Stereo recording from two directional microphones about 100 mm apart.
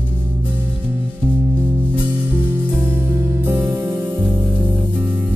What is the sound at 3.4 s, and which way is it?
Music, 25° right (ahead or behind).